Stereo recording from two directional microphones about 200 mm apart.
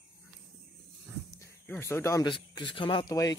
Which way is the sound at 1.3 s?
15° left (ahead or behind).